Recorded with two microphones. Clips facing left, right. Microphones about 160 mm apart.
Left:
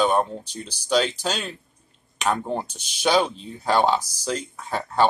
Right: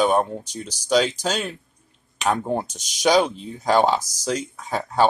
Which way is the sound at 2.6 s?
45° right (ahead or behind).